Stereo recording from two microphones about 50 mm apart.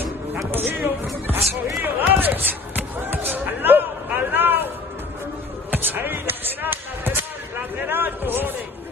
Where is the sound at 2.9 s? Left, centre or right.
Right.